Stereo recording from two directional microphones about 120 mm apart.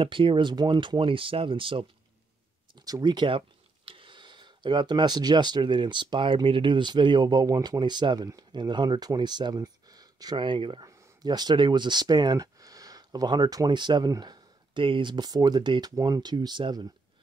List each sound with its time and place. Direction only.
0.0 s speech: 45° right (ahead or behind)
2.7 s speech: 30° right (ahead or behind)